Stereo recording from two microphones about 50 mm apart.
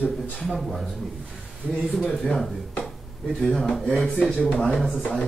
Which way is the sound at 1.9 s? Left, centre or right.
Centre.